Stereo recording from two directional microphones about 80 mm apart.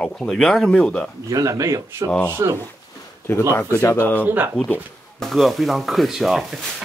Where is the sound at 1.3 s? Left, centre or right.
Right.